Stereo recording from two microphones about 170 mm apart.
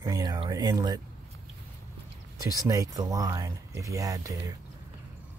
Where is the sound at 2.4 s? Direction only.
20° right (ahead or behind).